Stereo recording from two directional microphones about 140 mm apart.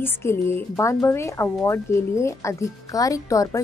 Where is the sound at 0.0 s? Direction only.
15° left (ahead or behind).